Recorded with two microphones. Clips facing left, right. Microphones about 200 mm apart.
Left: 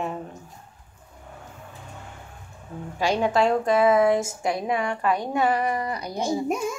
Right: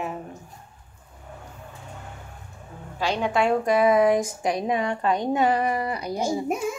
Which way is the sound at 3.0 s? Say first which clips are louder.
Left 2 dB; 10° left (ahead or behind).